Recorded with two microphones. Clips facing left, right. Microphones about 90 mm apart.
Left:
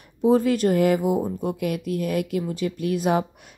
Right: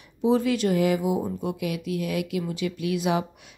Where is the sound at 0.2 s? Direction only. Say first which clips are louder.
Left 3 dB; 45° left (ahead or behind).